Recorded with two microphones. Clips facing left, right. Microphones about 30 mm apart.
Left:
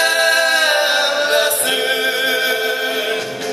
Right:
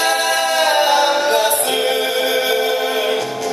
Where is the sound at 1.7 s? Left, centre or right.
Left.